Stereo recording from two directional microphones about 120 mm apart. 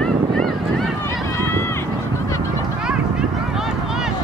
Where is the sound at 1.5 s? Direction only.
20° left (ahead or behind).